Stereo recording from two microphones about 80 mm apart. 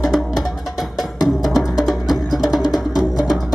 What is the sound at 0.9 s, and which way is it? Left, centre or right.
Music, left.